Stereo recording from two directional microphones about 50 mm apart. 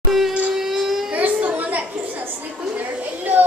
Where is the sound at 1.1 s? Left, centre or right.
Right.